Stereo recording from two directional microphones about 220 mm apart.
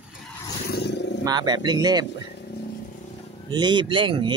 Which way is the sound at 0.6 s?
50° left (ahead or behind).